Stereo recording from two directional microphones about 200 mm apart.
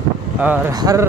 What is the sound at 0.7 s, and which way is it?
Speech, 20° right (ahead or behind).